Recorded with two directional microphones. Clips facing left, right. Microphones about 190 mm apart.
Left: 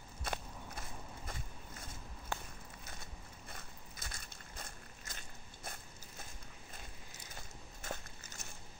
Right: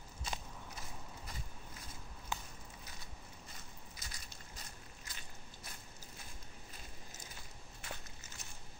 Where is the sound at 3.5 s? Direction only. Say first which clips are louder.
Left 2 dB; 55° left (ahead or behind).